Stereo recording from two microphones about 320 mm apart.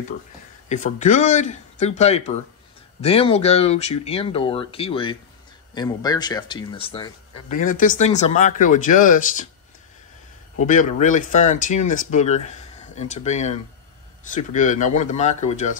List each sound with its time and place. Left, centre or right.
0.7 s speech: left
10.6 s speech: left